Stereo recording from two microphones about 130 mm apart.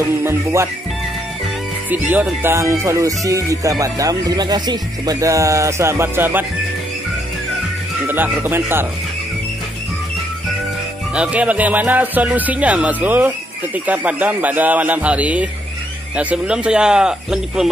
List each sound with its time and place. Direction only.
0.0 s speech: 20° right (ahead or behind)
1.9 s speech: 15° right (ahead or behind)
8.1 s speech: 15° right (ahead or behind)
11.1 s speech: 10° right (ahead or behind)